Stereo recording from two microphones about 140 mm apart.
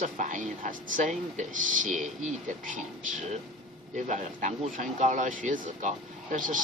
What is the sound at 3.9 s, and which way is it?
Speech, 60° right (ahead or behind).